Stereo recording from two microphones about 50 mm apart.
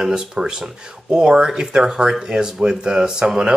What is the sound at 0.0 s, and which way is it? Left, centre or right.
Speech, centre.